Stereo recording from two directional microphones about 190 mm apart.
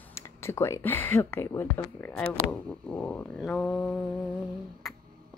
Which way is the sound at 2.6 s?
10° left (ahead or behind).